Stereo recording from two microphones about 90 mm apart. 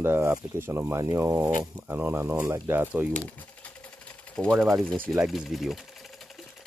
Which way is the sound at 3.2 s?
15° left (ahead or behind).